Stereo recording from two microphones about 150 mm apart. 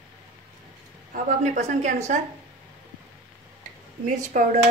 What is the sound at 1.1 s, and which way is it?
Speech, 55° right (ahead or behind).